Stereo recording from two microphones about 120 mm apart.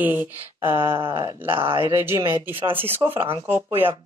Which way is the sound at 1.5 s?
45° right (ahead or behind).